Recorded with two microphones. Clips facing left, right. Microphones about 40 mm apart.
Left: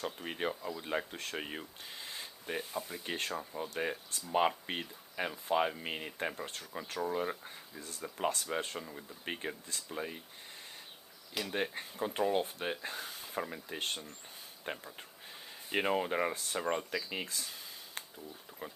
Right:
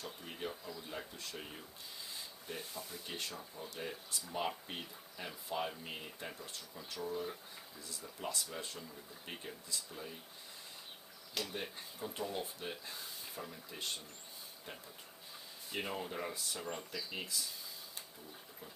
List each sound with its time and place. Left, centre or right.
0.0 s speech: left
11.5 s speech: left